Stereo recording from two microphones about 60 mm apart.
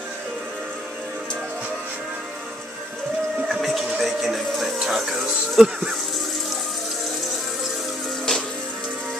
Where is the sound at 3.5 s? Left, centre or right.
Centre.